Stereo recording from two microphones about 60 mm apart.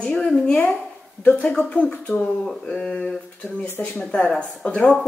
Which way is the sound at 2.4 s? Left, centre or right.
Centre.